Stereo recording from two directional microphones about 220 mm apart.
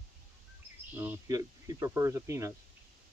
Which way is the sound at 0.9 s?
10° right (ahead or behind).